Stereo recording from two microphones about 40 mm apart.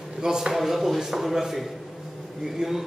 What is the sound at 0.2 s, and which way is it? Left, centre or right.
Speech, centre.